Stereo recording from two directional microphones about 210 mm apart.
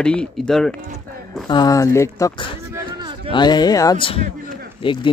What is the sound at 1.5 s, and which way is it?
Speech, 15° left (ahead or behind).